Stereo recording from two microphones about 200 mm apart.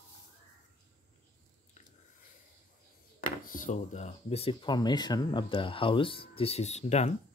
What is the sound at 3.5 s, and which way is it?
Speech, 40° left (ahead or behind).